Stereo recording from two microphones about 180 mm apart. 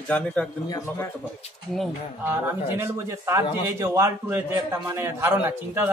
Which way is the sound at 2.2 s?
15° right (ahead or behind).